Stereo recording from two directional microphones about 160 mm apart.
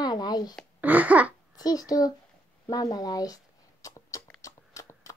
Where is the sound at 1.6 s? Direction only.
25° left (ahead or behind).